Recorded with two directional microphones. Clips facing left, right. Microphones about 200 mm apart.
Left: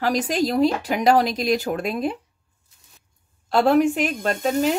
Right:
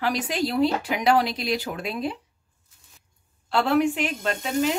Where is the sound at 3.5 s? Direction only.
40° left (ahead or behind).